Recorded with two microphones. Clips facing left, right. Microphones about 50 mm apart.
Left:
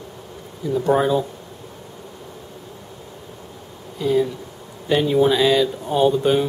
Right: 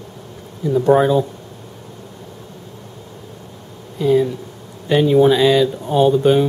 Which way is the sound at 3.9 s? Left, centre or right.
Centre.